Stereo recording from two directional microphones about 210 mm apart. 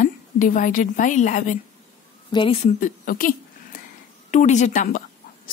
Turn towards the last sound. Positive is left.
turn(degrees=35)  # may be behind; listen again after turning